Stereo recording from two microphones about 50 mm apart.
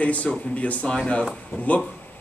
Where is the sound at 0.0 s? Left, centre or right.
Left.